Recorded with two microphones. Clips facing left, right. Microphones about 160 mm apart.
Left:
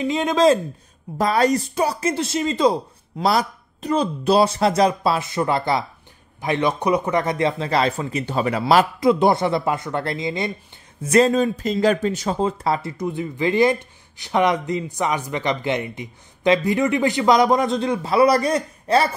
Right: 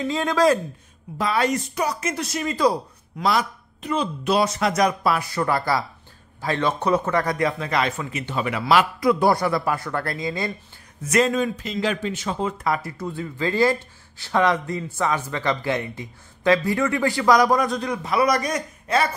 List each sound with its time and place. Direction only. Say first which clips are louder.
0.0 s speech: left 3 dB; 20° left (ahead or behind)
1.1 s speech: left 4 dB; 40° left (ahead or behind); by 3.3 s 25° left (ahead or behind)
3.3 s speech: left 2 dB; 35° left (ahead or behind)
9.0 s speech: left 2 dB; 25° left (ahead or behind)
11.0 s speech: left 4 dB; 30° left (ahead or behind)